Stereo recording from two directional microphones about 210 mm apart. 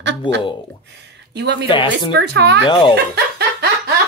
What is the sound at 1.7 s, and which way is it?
Speech, 25° left (ahead or behind).